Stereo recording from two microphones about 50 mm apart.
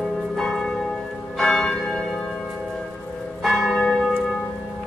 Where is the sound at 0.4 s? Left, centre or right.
Centre.